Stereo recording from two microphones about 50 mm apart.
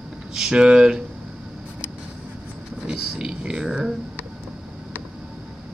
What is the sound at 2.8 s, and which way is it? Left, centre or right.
Speech, centre.